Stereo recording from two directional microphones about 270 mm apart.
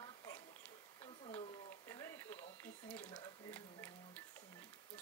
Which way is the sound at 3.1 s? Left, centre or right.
Centre.